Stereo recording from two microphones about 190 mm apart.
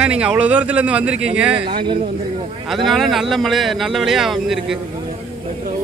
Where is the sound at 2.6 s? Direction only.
Centre (ahead or behind).